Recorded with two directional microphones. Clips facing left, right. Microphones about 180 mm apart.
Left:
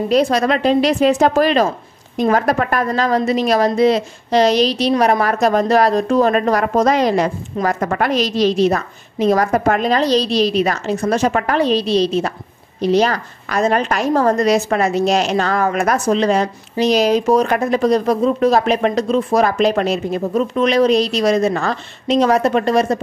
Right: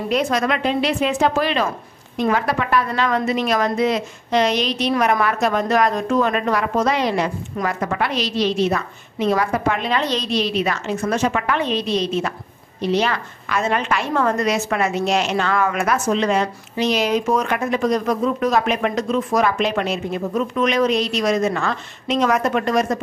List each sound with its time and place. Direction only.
0.1 s a woman's voice: 35° left (ahead or behind)